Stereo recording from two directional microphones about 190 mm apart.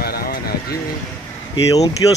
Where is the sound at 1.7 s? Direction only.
20° left (ahead or behind).